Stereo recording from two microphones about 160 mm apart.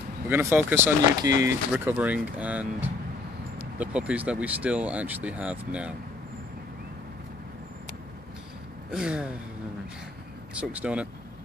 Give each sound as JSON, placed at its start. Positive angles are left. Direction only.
{"t": 0.3, "sound": "speech", "side_deg": -15}
{"t": 1.7, "sound": "speech", "side_deg": -10}
{"t": 8.9, "sound": "speech", "side_deg": -5}
{"t": 10.5, "sound": "speech", "side_deg": -10}